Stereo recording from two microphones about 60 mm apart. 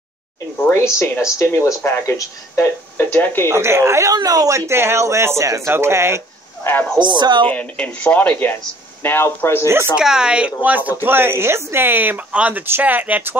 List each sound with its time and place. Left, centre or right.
0.7 s speech: left
3.4 s speech: right
4.1 s speech: right
5.7 s speech: right
6.6 s speech: left
7.4 s speech: left
9.9 s a woman's voice: centre; by 12.2 s right
12.3 s speech: right